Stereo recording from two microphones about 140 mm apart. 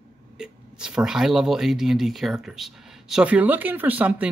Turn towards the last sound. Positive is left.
turn(degrees=-10)  # may be behind; listen again after turning